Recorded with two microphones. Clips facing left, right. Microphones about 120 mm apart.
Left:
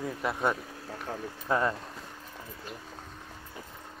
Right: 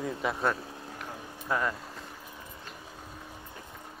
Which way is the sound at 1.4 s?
20° left (ahead or behind).